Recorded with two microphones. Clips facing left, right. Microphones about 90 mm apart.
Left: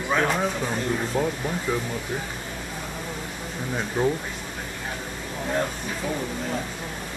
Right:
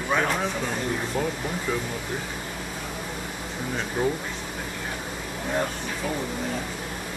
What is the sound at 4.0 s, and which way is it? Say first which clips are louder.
Speech: left 2 dB; 5° right (ahead or behind).